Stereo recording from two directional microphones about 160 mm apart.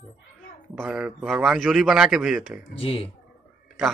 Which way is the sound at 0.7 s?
5° right (ahead or behind).